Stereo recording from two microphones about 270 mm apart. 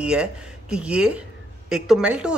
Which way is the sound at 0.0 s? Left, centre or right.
Centre.